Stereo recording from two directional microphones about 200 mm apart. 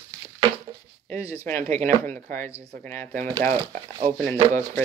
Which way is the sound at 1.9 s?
40° right (ahead or behind).